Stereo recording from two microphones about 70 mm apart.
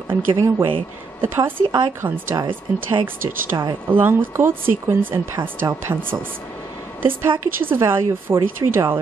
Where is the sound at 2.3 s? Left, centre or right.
Right.